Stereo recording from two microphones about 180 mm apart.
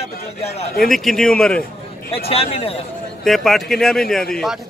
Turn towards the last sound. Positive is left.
turn(degrees=0)  # may be behind; listen again after turning